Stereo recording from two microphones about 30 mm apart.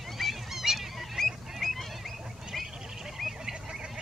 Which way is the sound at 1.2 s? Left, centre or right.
Centre.